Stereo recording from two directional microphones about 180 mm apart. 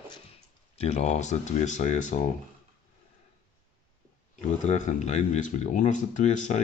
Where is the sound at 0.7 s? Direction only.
35° left (ahead or behind).